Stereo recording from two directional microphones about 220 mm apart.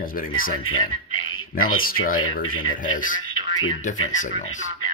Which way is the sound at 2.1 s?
70° left (ahead or behind).